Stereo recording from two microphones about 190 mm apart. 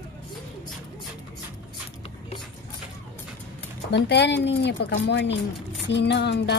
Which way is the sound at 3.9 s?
60° left (ahead or behind).